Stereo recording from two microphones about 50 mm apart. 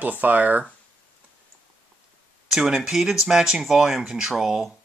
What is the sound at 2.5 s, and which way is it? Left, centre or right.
Speech, centre.